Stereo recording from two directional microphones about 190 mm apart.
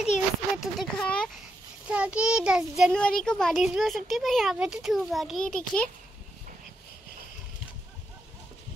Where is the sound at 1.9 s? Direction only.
5° right (ahead or behind).